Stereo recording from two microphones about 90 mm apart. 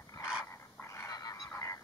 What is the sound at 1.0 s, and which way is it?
Frog, 45° left (ahead or behind).